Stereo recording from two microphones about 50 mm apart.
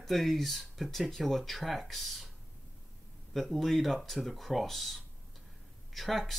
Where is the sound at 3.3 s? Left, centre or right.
Centre.